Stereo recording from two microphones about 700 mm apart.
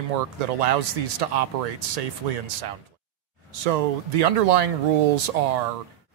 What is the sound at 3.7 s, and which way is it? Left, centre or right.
Speech, right.